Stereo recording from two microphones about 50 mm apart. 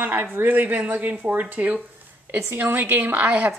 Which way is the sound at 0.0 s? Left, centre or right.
Right.